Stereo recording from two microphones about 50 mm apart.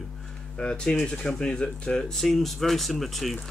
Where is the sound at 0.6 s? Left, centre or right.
Centre.